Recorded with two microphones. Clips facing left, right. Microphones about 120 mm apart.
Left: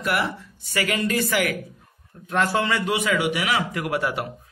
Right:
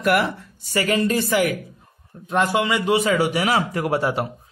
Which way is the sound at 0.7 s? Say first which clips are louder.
Right 4 dB; 35° right (ahead or behind).